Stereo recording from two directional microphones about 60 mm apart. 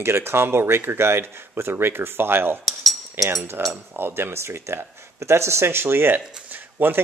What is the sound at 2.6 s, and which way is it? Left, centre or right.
Cutlery, centre.